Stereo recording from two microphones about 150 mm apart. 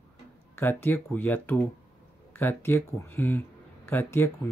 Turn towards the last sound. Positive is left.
turn(degrees=15)  # may be behind; listen again after turning